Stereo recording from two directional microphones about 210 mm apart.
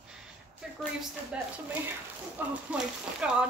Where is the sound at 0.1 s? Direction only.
Centre (ahead or behind).